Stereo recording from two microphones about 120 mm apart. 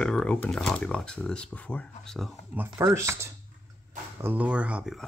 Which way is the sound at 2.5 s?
15° right (ahead or behind).